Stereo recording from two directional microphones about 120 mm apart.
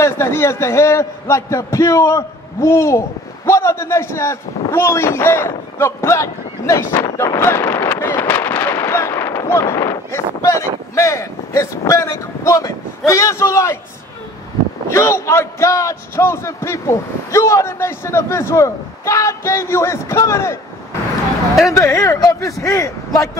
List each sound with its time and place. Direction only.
0.0 s a man's voice: 20° left (ahead or behind)
14.9 s a man's voice: 25° left (ahead or behind)
21.6 s a man's voice: 25° left (ahead or behind)